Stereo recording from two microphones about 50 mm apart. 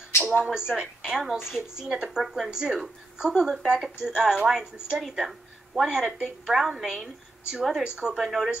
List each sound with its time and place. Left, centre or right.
0.5 s a woman's voice: centre
8.2 s a woman's voice: centre